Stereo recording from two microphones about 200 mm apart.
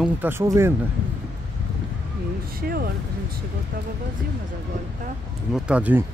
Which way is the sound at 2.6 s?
50° right (ahead or behind).